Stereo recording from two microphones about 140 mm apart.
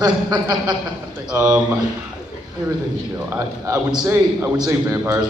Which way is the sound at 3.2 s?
20° right (ahead or behind).